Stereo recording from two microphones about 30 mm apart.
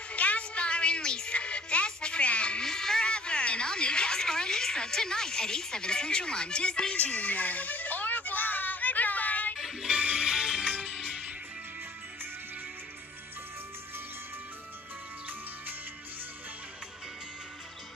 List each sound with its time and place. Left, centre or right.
0.1 s music: left
2.6 s music: centre
3.1 s a sound: left
7.0 s a sound: left
9.6 s music: centre
10.1 s music: right